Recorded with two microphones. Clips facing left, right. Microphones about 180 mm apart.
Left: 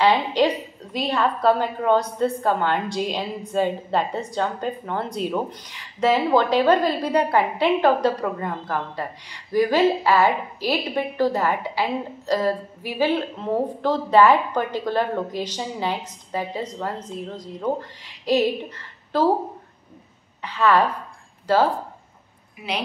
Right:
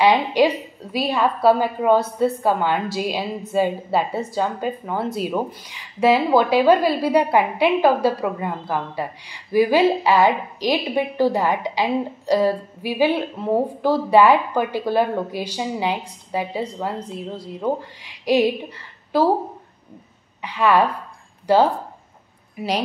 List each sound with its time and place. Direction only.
0.0 s a woman's voice: 10° right (ahead or behind)
20.4 s a woman's voice: 15° right (ahead or behind)